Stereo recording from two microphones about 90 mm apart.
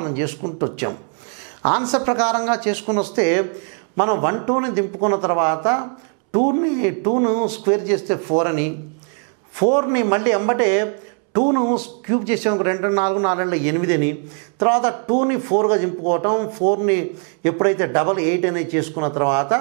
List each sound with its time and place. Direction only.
0.0 s a man's voice: 15° right (ahead or behind)